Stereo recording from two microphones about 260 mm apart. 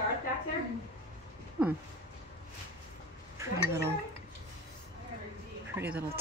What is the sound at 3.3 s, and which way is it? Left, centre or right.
Speech, centre.